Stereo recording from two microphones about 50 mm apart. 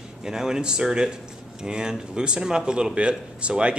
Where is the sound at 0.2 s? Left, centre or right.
Centre.